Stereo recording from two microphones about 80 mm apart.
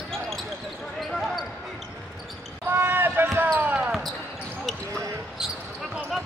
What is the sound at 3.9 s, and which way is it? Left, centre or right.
Basketball bounce, centre.